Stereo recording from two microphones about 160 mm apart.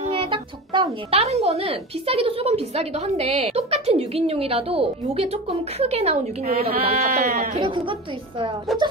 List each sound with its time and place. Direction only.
0.0 s music: 35° right (ahead or behind)
1.1 s a woman's voice: 40° right (ahead or behind)
7.2 s speech: 60° right (ahead or behind)
7.5 s a woman's voice: 30° right (ahead or behind)